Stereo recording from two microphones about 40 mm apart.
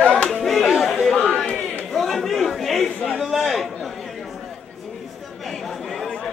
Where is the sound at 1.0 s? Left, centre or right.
Centre.